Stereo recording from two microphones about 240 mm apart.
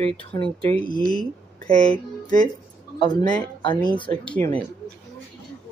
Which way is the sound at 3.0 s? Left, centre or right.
Centre.